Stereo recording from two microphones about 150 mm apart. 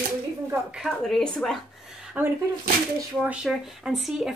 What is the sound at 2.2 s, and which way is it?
Speech, 10° right (ahead or behind).